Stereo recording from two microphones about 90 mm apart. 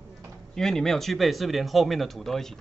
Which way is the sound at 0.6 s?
5° left (ahead or behind).